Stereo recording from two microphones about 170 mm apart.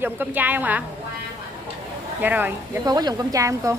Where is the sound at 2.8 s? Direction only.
25° right (ahead or behind).